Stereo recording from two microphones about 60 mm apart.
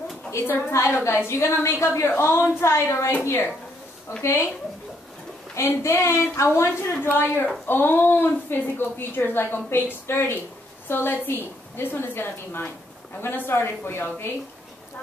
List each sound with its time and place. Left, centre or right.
0.5 s a woman's voice: left
4.2 s a woman's voice: left
5.7 s a woman's voice: left
7.0 s a woman's voice: left